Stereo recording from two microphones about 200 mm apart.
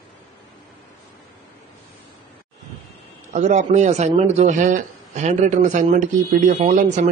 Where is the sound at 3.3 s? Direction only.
35° right (ahead or behind).